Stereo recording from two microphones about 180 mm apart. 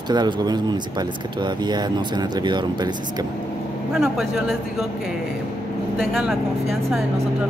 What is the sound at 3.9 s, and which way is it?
Speech, 5° right (ahead or behind).